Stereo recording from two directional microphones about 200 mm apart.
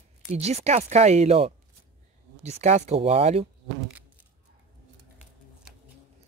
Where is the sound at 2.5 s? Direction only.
35° right (ahead or behind).